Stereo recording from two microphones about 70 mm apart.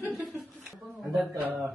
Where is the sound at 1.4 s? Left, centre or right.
Right.